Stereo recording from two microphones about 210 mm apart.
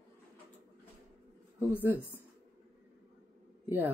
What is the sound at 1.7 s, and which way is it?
Speech, 10° right (ahead or behind).